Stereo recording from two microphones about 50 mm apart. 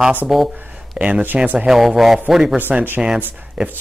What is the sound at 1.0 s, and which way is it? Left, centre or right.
Speech, right.